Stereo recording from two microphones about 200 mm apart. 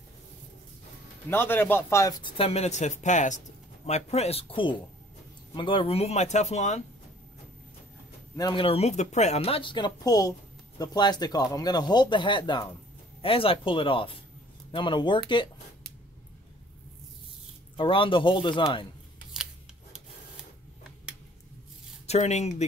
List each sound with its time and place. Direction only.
1.3 s speech: 10° left (ahead or behind)
2.3 s speech: 30° left (ahead or behind)
8.4 s speech: 20° left (ahead or behind)
17.7 s speech: 25° left (ahead or behind)
22.0 s speech: 35° left (ahead or behind)